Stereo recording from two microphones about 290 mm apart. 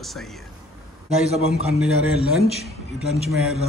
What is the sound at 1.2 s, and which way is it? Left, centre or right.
Speech, right.